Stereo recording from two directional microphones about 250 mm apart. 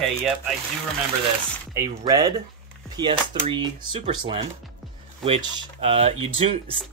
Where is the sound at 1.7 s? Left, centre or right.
Centre.